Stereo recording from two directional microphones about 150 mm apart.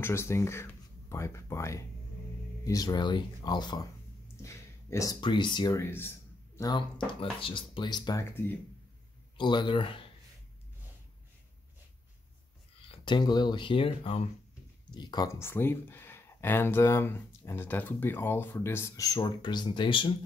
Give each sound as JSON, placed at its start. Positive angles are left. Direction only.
{"t": 0.0, "sound": "speech", "side_deg": 15}
{"t": 5.8, "sound": "a sound", "side_deg": 15}
{"t": 7.1, "sound": "speech", "side_deg": 35}
{"t": 12.8, "sound": "speech", "side_deg": 30}
{"t": 14.9, "sound": "speech", "side_deg": 30}